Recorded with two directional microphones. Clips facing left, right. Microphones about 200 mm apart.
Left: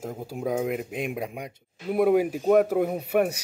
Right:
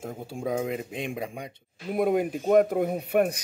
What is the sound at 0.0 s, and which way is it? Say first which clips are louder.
Speech: left 2 dB; 5° left (ahead or behind).